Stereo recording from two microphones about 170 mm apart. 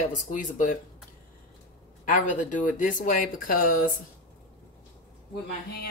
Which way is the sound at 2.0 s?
50° left (ahead or behind).